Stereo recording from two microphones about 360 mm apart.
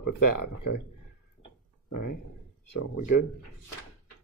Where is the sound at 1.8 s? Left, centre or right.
Left.